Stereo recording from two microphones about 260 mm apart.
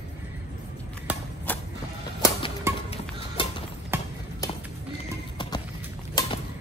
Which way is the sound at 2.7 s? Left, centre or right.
Centre.